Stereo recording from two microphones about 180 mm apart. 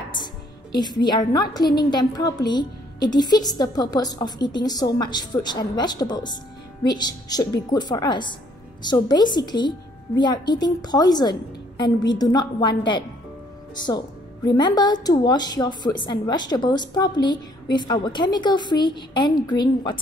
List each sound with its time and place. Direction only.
0.1 s music: 25° left (ahead or behind)
1.8 s a woman's voice: 25° left (ahead or behind)